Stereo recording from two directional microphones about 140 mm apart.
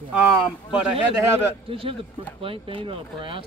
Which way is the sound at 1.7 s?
40° right (ahead or behind).